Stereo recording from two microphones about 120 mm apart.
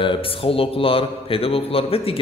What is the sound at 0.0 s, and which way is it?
A man's voice, 45° left (ahead or behind).